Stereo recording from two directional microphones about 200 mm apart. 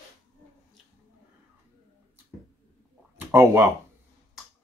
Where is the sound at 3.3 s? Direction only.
15° right (ahead or behind).